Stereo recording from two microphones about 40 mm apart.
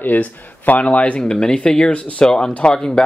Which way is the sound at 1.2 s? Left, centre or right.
Left.